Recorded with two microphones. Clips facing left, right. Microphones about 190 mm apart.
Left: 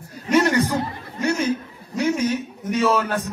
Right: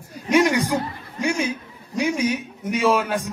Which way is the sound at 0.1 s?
10° right (ahead or behind).